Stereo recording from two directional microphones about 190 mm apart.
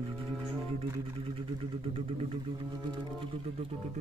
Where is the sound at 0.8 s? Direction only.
30° right (ahead or behind).